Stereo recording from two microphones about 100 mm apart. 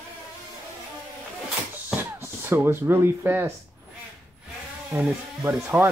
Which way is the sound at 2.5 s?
25° right (ahead or behind).